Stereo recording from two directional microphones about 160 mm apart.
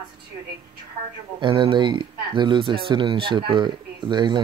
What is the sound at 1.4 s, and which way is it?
Speech, 30° right (ahead or behind).